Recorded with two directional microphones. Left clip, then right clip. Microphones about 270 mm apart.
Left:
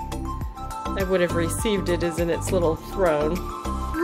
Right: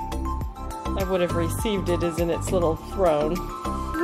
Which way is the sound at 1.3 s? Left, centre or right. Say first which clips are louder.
Left 2 dB; centre.